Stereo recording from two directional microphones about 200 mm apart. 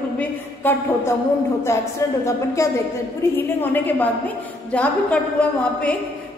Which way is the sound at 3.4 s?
10° left (ahead or behind).